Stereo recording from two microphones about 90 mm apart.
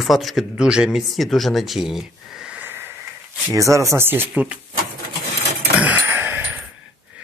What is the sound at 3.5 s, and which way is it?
Speech, 35° right (ahead or behind).